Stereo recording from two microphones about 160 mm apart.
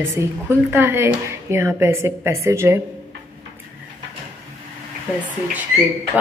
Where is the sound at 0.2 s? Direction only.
15° right (ahead or behind).